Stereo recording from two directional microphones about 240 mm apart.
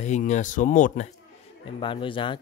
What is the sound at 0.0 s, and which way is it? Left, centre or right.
Speech, left.